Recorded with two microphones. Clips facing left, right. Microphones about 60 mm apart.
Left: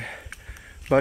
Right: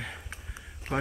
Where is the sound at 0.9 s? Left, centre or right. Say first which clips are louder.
Left 11 dB; left.